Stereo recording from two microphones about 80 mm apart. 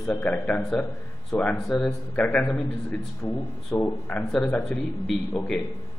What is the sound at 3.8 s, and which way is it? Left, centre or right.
Speech, left.